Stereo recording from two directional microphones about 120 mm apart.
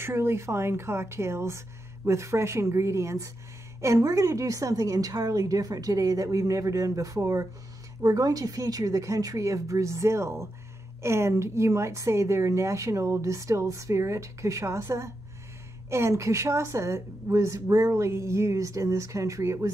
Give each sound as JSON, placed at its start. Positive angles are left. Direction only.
{"t": 0.0, "sound": "a woman's voice", "side_deg": -20}